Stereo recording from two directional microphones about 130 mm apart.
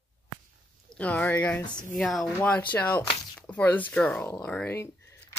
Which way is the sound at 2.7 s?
15° left (ahead or behind).